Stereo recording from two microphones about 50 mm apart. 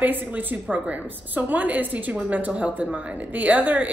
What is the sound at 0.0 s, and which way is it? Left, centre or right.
A woman's voice, right.